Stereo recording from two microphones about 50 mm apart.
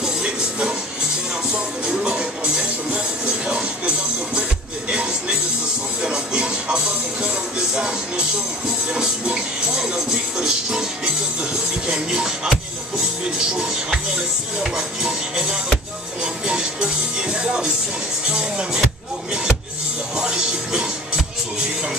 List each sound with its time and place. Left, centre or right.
0.0 s music: centre
2.0 s music: centre
11.9 s music: centre
20.2 s music: centre